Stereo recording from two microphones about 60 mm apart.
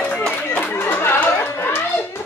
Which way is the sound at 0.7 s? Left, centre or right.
Left.